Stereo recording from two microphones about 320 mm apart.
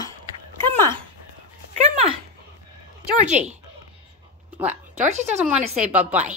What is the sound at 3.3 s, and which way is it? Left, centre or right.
Speech, right.